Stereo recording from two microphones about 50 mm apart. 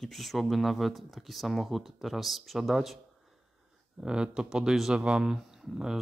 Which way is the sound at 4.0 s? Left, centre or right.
Centre.